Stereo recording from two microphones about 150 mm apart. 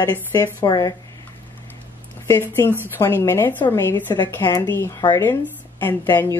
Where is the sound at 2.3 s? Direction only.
15° left (ahead or behind).